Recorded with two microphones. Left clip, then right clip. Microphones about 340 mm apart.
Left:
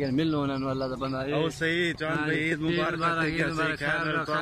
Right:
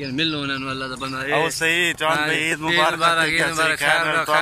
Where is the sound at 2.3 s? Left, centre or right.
Right.